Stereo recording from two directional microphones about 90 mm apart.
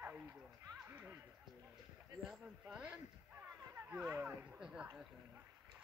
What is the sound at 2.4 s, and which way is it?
A man's voice, 10° right (ahead or behind).